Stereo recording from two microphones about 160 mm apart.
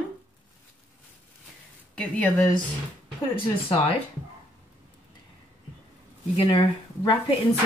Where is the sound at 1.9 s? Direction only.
10° left (ahead or behind).